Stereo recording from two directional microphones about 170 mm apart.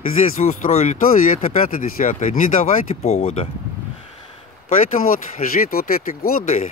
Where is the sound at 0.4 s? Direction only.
55° left (ahead or behind).